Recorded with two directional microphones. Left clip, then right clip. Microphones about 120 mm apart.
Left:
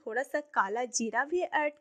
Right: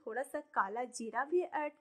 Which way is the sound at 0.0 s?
35° left (ahead or behind).